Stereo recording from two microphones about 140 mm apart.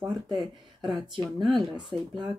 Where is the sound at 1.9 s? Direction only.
35° right (ahead or behind).